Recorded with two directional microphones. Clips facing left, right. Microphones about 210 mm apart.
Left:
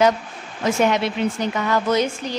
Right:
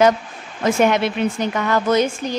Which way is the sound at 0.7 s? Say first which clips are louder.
Right 2 dB; 55° right (ahead or behind).